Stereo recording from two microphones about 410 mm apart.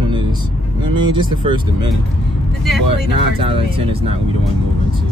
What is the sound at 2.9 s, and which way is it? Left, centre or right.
Speech, centre.